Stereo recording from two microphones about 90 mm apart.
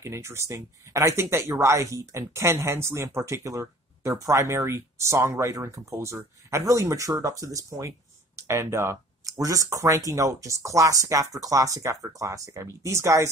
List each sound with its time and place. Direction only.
0.0 s speech: 30° right (ahead or behind)